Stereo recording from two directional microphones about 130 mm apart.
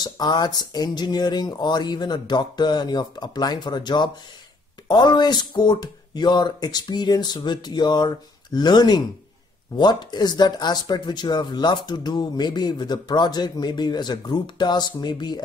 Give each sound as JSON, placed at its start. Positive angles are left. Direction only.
{"t": 0.0, "sound": "speech", "side_deg": 35}